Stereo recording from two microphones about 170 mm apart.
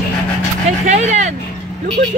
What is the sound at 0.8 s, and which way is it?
Speech, 45° right (ahead or behind).